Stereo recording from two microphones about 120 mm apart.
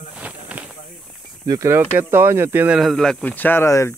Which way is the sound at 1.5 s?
25° right (ahead or behind).